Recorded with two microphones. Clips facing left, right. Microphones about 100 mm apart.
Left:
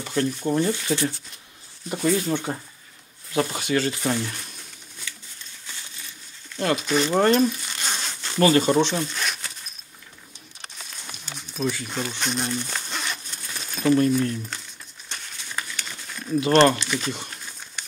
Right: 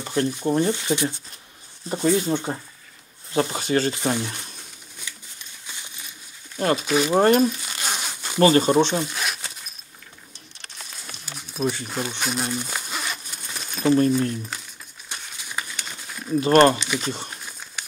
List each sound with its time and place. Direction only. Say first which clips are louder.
0.0 s speech: right 1 dB; 20° right (ahead or behind)
5.7 s a sound: right 1 dB; 15° right (ahead or behind)
6.8 s speech: right 1 dB; 10° right (ahead or behind)
7.2 s crumpling: right 2 dB; 15° right (ahead or behind)
8.4 s speech: right 2 dB; 30° right (ahead or behind)
8.7 s speech: right 2 dB; 15° right (ahead or behind)
11.2 s a sound: right 2 dB; 5° right (ahead or behind)
11.9 s crumpling: right 1 dB; 10° right (ahead or behind)
13.5 s a sound: even; 5° right (ahead or behind)
13.8 s speech: right 1 dB; 30° right (ahead or behind)
15.0 s crumpling: right 1 dB; 10° right (ahead or behind)
16.8 s speech: right 1 dB; 15° right (ahead or behind)
17.1 s speech: right 1 dB; 25° right (ahead or behind)